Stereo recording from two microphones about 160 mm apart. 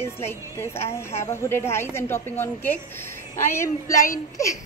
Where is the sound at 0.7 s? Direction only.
40° left (ahead or behind).